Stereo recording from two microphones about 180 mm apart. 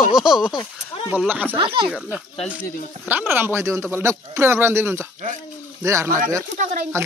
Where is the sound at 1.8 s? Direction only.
5° right (ahead or behind).